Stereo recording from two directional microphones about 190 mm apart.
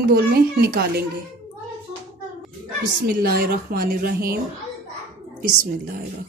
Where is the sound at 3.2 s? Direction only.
55° right (ahead or behind).